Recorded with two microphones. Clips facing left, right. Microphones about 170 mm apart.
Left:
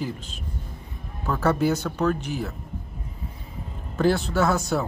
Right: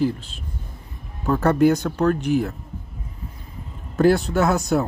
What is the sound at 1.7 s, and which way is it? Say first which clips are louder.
Speech: right 4 dB; 15° right (ahead or behind).